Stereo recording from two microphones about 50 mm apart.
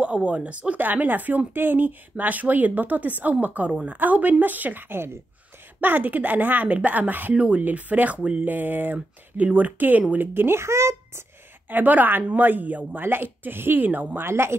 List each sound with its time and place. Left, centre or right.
0.0 s a woman's voice: right
5.8 s a woman's voice: right
7.3 s speech: right
7.6 s speech: right
8.5 s a woman's voice: right
10.1 s speech: right
11.7 s a woman's voice: right
13.0 s a woman's voice: right
14.2 s speech: right